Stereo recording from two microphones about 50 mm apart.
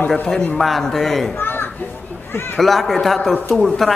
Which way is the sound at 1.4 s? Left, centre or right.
Left.